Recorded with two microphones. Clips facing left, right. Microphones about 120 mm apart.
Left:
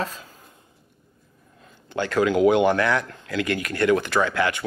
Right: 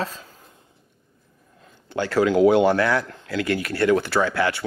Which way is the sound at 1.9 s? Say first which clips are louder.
Right 1 dB; 20° left (ahead or behind).